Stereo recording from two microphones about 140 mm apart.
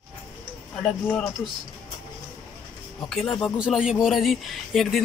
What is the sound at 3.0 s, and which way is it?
Speech, 5° left (ahead or behind).